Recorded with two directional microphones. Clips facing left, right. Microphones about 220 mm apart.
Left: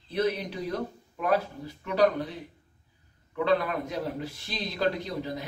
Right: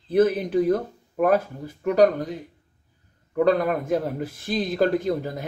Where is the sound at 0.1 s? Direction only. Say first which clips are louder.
Right 9 dB; 50° right (ahead or behind).